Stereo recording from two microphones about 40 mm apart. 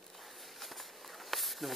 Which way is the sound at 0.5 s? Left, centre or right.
Centre.